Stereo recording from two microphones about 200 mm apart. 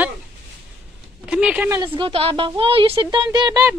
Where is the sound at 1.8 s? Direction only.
25° right (ahead or behind).